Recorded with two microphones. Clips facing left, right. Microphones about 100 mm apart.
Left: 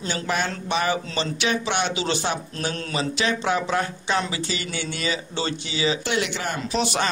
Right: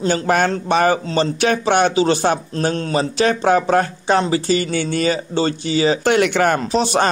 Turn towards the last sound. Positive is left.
turn(degrees=-40)  # may be behind; listen again after turning